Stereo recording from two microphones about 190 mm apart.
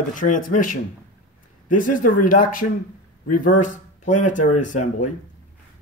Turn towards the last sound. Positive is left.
turn(degrees=40)  # may be behind; listen again after turning